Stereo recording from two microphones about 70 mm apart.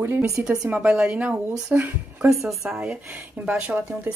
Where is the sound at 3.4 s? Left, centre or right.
Right.